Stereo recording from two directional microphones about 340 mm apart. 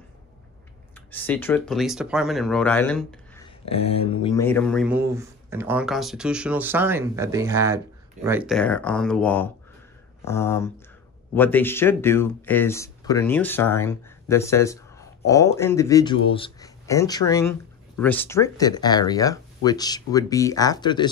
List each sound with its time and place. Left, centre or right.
1.1 s speech: centre
3.6 s speech: centre